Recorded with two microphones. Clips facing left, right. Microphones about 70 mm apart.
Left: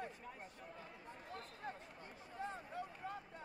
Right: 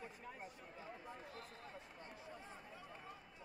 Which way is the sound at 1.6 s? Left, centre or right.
Left.